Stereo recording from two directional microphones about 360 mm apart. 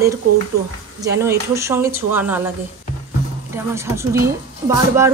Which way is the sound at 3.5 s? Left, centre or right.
Centre.